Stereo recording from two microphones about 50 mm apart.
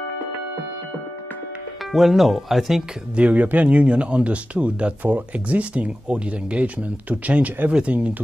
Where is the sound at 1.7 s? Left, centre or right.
Centre.